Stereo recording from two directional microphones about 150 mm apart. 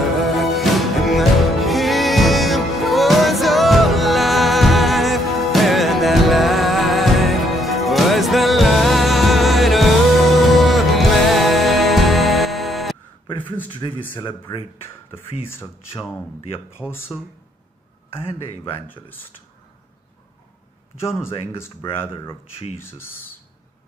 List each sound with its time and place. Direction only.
0.2 s music: centre (ahead or behind)
13.7 s speech: 30° left (ahead or behind)
16.8 s speech: 10° left (ahead or behind)
21.2 s speech: 15° left (ahead or behind)
21.8 s speech: 35° left (ahead or behind)
22.8 s speech: 15° left (ahead or behind)